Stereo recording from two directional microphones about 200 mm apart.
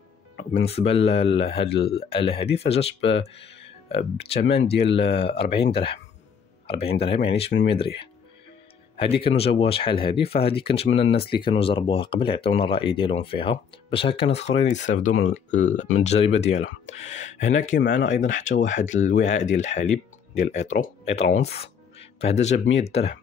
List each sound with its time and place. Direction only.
0.7 s speech: 30° left (ahead or behind)
8.9 s speech: 30° left (ahead or behind)